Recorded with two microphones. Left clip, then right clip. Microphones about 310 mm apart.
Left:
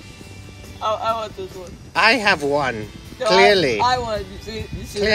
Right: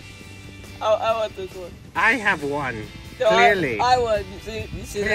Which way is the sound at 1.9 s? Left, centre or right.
Centre.